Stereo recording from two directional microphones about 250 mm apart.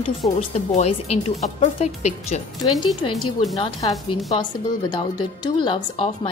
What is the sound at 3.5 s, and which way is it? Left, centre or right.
Speech, centre.